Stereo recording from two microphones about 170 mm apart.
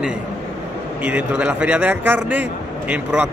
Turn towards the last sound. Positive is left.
turn(degrees=-10)  # may be behind; listen again after turning